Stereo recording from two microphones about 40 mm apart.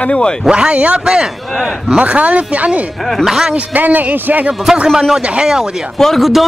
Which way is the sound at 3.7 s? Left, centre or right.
Right.